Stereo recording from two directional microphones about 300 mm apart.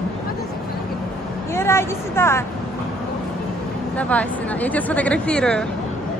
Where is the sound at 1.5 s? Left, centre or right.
Centre.